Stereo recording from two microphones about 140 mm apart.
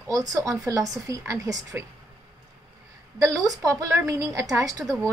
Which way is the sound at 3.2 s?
25° right (ahead or behind).